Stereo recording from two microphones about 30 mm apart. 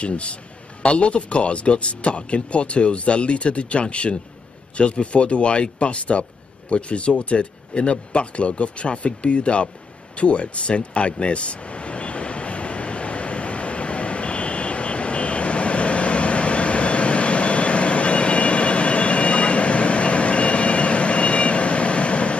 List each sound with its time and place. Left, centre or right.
0.0 s speech: left
10.1 s vehicle: left